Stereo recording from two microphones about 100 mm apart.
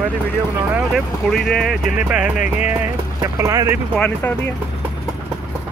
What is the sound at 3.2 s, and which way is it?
Speech, 35° right (ahead or behind).